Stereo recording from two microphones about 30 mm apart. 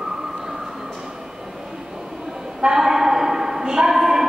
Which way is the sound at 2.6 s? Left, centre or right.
Centre.